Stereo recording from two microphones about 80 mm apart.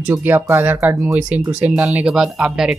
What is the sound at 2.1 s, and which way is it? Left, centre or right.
Speech, centre.